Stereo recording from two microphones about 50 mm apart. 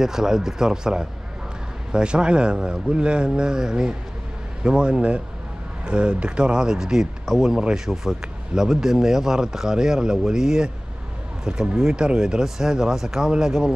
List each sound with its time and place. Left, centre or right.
0.0 s a man's voice: centre